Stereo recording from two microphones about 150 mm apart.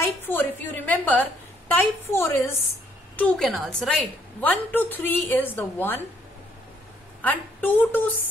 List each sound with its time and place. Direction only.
0.2 s a woman's voice: 15° left (ahead or behind)
3.2 s a woman's voice: 5° left (ahead or behind)
4.4 s a woman's voice: 10° left (ahead or behind)
7.2 s a woman's voice: 10° left (ahead or behind)